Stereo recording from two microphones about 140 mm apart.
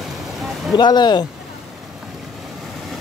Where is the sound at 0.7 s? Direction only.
30° left (ahead or behind).